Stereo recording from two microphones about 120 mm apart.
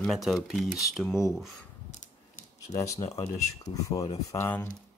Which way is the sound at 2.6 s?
30° left (ahead or behind).